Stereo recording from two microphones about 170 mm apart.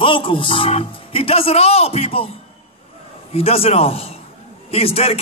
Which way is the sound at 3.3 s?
35° left (ahead or behind).